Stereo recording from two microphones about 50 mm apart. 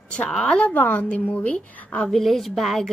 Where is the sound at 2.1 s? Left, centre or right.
Centre.